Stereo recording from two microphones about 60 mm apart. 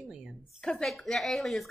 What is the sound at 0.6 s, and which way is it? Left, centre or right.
Speech, centre.